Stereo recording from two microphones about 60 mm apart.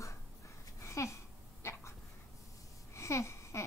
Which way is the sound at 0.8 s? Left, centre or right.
Left.